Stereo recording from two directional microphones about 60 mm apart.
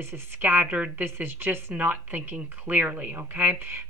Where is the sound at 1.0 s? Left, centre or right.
Right.